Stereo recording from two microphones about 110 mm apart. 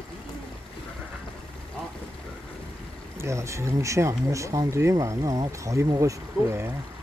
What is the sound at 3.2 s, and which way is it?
Speech, 25° right (ahead or behind).